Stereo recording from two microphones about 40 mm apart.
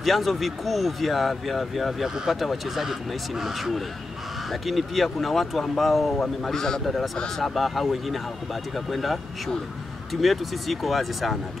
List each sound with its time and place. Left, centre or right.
0.0 s speech: centre
2.0 s speech: centre
2.4 s speech: centre
6.1 s a man's voice: centre
10.2 s speech: centre